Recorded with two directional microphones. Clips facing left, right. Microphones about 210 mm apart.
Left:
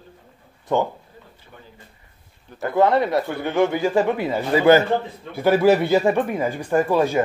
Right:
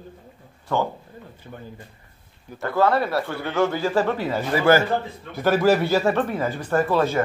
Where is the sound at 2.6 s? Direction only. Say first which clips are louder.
Left 3 dB; 20° left (ahead or behind).